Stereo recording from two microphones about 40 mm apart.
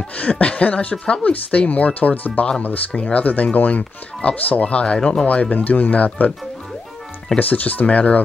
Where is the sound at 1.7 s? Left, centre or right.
Left.